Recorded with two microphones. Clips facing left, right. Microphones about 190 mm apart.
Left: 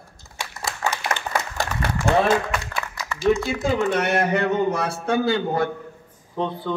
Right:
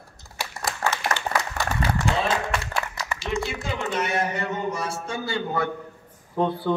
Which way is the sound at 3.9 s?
65° left (ahead or behind).